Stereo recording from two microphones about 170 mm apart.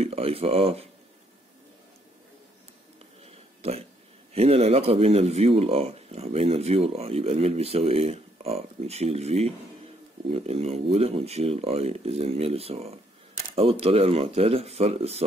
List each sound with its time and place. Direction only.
0.0 s speech: 35° right (ahead or behind)
4.3 s speech: 35° right (ahead or behind)